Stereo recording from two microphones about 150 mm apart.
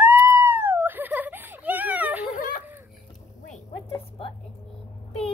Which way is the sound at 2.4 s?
75° left (ahead or behind).